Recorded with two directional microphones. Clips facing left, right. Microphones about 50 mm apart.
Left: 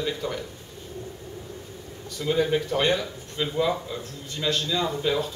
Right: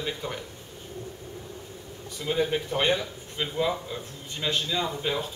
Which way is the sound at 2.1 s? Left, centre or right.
Centre.